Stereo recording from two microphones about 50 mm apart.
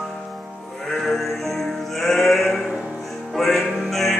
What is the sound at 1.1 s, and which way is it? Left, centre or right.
Music, centre.